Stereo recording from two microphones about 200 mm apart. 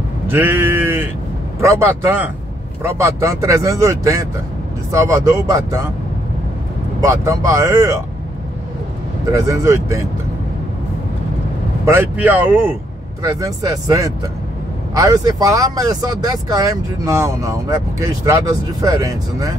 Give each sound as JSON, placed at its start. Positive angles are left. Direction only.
{"t": 0.3, "sound": "sheep", "side_deg": -10}
{"t": 1.6, "sound": "speech", "side_deg": -15}
{"t": 7.0, "sound": "speech", "side_deg": -15}
{"t": 9.3, "sound": "speech", "side_deg": -15}
{"t": 11.8, "sound": "speech", "side_deg": -15}